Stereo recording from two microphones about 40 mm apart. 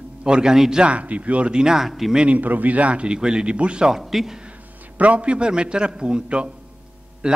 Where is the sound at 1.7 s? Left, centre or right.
Centre.